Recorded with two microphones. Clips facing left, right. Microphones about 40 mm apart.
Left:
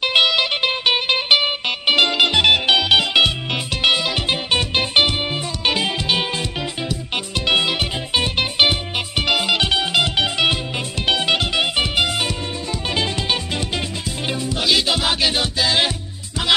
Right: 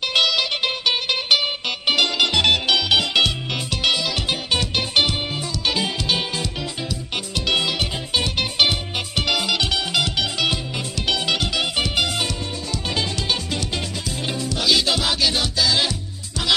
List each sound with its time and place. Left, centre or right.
0.0 s music: left